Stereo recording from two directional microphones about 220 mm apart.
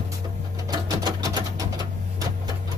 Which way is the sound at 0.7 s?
20° right (ahead or behind).